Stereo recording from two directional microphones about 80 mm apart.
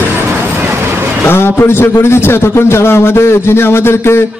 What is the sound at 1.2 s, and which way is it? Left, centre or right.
A man's voice, left.